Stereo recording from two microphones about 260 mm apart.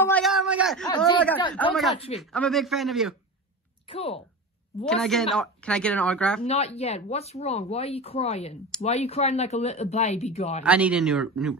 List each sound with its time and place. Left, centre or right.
0.0 s a sound: centre
0.8 s a sound: centre
1.5 s speech: centre
3.8 s speech: left
4.8 s speech: centre
6.4 s speech: left
10.6 s speech: centre